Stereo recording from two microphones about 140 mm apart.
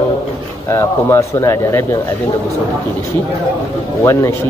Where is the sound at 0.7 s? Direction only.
20° left (ahead or behind).